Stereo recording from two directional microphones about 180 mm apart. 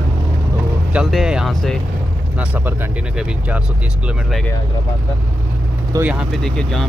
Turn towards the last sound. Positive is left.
turn(degrees=0)  # may be behind; listen again after turning